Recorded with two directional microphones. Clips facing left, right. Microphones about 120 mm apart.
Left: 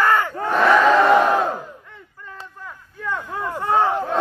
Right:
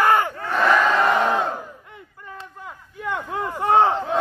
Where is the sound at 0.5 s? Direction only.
15° left (ahead or behind).